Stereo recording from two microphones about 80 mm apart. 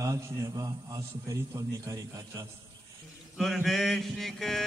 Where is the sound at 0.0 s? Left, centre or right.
Right.